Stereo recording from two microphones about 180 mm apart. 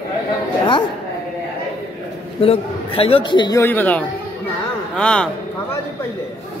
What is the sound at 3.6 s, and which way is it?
A man's voice, 10° left (ahead or behind).